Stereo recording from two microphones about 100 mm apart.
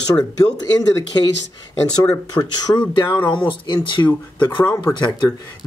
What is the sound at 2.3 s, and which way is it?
Speech, 45° left (ahead or behind).